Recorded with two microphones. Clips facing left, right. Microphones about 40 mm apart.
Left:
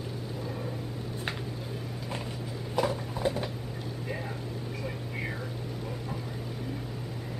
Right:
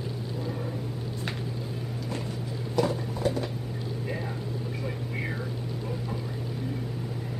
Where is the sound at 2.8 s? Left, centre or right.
Centre.